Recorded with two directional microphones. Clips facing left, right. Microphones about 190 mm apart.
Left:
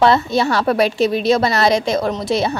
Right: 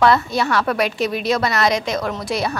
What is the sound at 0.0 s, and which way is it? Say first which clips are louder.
A woman's voice: left 2 dB; 25° left (ahead or behind).